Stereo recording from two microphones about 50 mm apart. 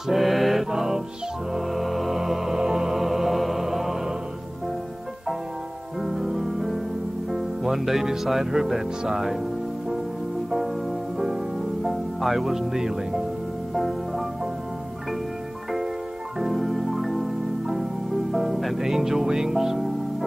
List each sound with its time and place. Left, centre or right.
0.1 s music: centre
5.9 s music: centre
7.2 s speech: centre
10.5 s music: centre
11.8 s speech: centre
13.7 s music: centre
16.3 s music: centre